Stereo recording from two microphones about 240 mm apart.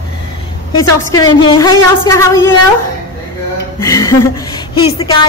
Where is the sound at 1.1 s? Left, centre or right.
Centre.